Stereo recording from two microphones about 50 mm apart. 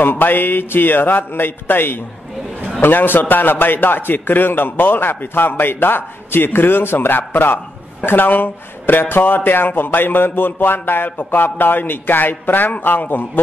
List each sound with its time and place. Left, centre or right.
0.0 s a man's voice: left